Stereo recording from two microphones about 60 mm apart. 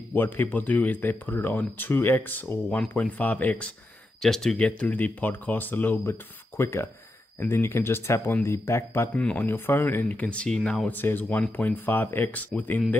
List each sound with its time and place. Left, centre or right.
0.1 s speech: left
4.2 s speech: centre
4.6 s speech: left
9.1 s speech: left
9.5 s speech: left
10.1 s speech: left
10.9 s speech: left